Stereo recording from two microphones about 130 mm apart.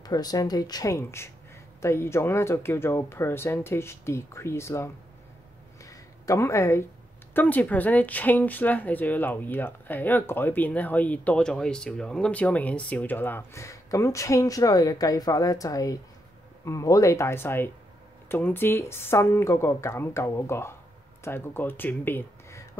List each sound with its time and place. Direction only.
0.0 s speech: 30° left (ahead or behind)
5.9 s a sound: 25° left (ahead or behind)
7.3 s speech: 15° left (ahead or behind)